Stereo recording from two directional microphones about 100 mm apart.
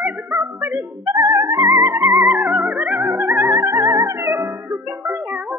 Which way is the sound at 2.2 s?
20° right (ahead or behind).